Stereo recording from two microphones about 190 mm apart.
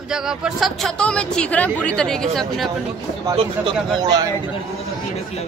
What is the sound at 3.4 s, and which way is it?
Speech, 25° right (ahead or behind).